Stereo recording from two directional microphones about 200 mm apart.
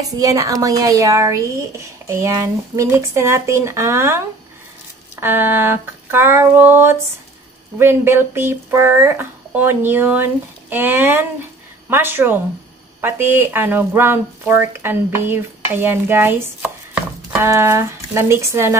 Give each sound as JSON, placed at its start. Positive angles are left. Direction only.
{"t": 0.0, "sound": "speech", "side_deg": -15}
{"t": 5.2, "sound": "speech", "side_deg": -10}
{"t": 16.9, "sound": "a sound", "side_deg": -5}
{"t": 17.5, "sound": "speech", "side_deg": -15}